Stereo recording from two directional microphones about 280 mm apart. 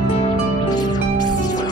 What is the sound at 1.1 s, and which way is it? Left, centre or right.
Music, right.